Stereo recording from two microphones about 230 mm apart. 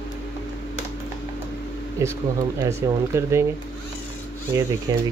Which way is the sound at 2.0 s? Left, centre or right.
Centre.